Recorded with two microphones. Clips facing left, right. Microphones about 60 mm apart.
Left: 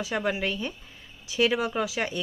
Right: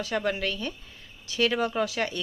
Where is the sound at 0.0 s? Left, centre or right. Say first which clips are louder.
Even; centre.